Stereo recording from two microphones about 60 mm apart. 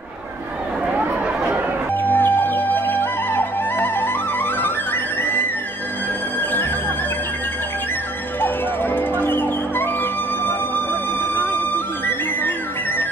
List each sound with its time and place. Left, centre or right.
0.9 s chatter: right
2.0 s music: left
8.4 s music: left